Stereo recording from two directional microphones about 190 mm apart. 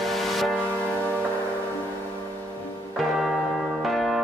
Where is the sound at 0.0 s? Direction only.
Centre (ahead or behind).